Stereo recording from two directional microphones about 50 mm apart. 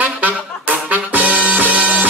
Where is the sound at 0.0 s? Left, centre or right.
Right.